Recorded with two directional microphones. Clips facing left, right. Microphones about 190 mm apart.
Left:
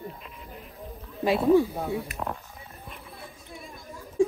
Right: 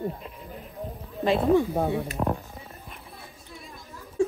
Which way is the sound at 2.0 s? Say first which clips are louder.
Right 6 dB; 30° right (ahead or behind).